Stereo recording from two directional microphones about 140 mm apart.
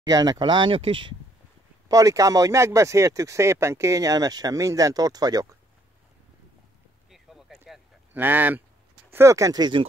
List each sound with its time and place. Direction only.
0.0 s speech: 25° right (ahead or behind)
1.9 s speech: 25° right (ahead or behind)
7.1 s boat: centre (ahead or behind)
8.1 s speech: 15° right (ahead or behind); by 9.8 s 30° right (ahead or behind)